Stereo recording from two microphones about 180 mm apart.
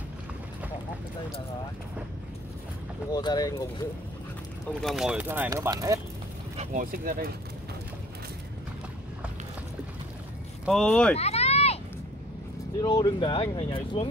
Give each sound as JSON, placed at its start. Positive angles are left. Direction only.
{"t": 3.1, "sound": "speech", "side_deg": 20}
{"t": 4.8, "sound": "speech", "side_deg": -5}
{"t": 6.5, "sound": "speech", "side_deg": -40}
{"t": 10.6, "sound": "speech", "side_deg": 0}
{"t": 11.1, "sound": "a sound", "side_deg": 35}
{"t": 12.8, "sound": "speech", "side_deg": 25}